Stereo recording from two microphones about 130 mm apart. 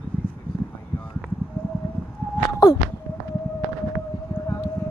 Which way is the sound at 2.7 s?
50° left (ahead or behind).